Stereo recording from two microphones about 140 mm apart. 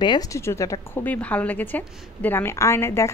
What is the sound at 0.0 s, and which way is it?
Speech, 30° left (ahead or behind).